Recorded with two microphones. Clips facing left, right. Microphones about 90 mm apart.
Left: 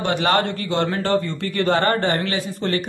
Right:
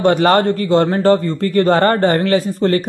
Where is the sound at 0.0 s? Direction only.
45° right (ahead or behind).